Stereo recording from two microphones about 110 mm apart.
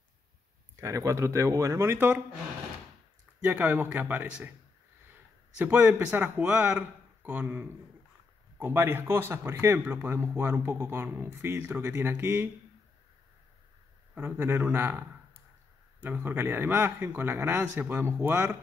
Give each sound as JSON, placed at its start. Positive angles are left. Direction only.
{"t": 0.7, "sound": "speech", "side_deg": -30}
{"t": 3.3, "sound": "speech", "side_deg": -15}
{"t": 5.6, "sound": "speech", "side_deg": -10}
{"t": 14.1, "sound": "speech", "side_deg": -15}